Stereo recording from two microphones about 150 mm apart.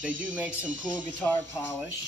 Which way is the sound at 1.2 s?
10° left (ahead or behind).